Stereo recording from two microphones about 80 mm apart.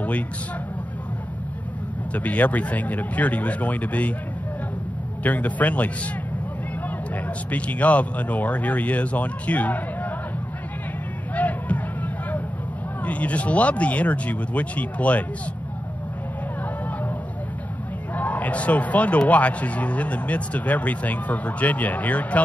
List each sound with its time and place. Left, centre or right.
2.1 s speech: centre
5.2 s speech: centre
7.5 s speech: centre
11.3 s a sound: centre
13.0 s speech: centre
18.1 s speech: centre